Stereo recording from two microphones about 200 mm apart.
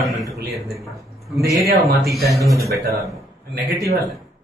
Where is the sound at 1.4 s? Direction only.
Centre (ahead or behind).